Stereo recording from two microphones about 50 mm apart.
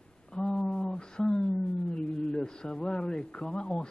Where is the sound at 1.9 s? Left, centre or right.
Centre.